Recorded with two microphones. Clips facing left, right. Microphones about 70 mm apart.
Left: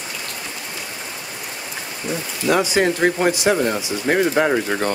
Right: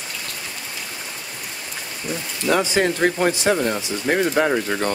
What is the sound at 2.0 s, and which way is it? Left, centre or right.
Speech, centre.